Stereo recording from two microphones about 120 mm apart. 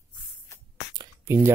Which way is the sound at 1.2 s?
20° right (ahead or behind).